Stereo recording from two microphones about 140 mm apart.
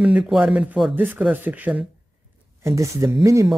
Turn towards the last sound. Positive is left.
turn(degrees=-20)  # may be behind; listen again after turning